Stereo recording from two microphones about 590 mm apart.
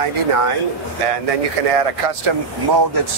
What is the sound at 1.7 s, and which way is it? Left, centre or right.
Speech, right.